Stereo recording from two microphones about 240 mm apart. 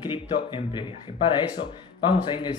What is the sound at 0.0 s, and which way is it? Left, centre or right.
Speech, centre.